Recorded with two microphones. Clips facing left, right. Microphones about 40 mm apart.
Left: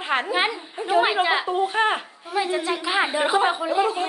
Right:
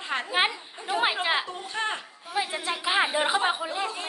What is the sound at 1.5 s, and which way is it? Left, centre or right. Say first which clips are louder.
Speech: left 10 dB; left.